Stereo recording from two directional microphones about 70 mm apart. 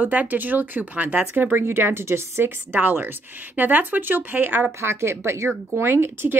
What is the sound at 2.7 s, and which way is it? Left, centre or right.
Speech, right.